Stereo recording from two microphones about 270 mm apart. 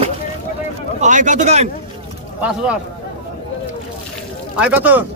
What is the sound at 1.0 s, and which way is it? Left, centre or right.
Speech, right.